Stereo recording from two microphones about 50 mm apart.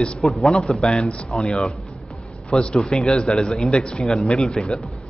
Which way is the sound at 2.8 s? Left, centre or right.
Centre.